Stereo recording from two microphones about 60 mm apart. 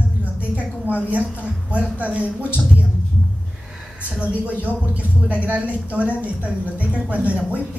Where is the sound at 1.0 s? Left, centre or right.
Right.